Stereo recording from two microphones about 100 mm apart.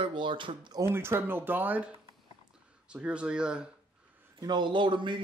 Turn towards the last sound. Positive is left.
turn(degrees=-55)  # may be behind; listen again after turning